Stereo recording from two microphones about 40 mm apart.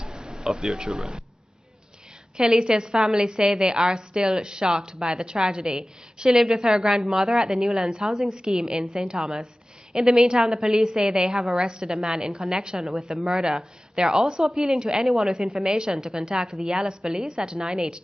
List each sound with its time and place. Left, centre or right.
0.0 s speech: centre
2.4 s a woman's voice: right
4.9 s a woman's voice: centre
5.2 s a woman's voice: centre
14.4 s a woman's voice: centre
15.2 s a woman's voice: right
15.5 s a woman's voice: centre